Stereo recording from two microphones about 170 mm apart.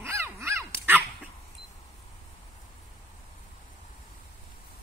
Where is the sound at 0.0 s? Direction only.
15° right (ahead or behind).